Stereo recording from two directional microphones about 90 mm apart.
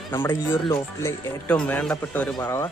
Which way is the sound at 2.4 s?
30° left (ahead or behind).